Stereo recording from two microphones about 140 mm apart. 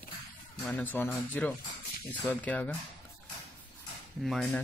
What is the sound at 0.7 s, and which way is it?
Speech, 15° left (ahead or behind).